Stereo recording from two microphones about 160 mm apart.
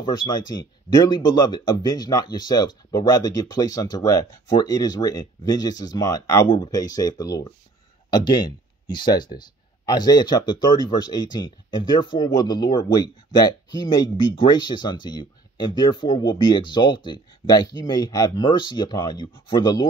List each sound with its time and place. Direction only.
0.0 s speech: 25° left (ahead or behind)